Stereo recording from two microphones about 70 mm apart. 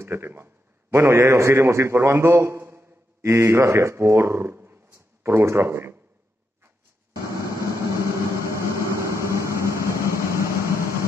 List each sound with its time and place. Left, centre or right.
0.0 s a man's voice: right
7.9 s vehicle: right